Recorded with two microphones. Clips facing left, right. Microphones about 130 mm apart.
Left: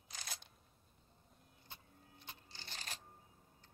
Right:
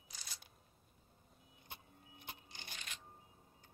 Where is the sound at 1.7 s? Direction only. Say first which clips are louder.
Right 3 dB; 60° right (ahead or behind).